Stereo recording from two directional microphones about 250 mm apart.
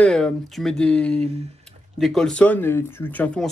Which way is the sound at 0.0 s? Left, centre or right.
Centre.